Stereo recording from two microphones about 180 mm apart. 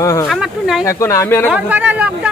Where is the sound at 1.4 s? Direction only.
5° right (ahead or behind).